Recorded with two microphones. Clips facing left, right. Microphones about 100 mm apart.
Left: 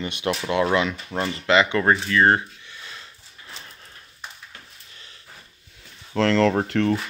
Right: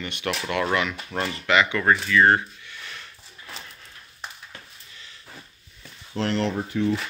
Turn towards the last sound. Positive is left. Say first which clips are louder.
# left 4 dB
turn(degrees=70)  # may be behind; listen again after turning